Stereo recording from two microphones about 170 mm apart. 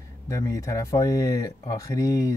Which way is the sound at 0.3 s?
15° left (ahead or behind).